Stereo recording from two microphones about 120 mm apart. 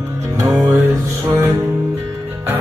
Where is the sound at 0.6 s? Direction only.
25° right (ahead or behind).